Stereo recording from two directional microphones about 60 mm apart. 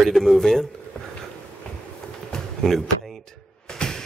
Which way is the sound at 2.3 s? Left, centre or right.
Centre.